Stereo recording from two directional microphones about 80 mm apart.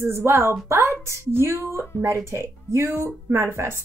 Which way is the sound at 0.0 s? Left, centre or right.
Right.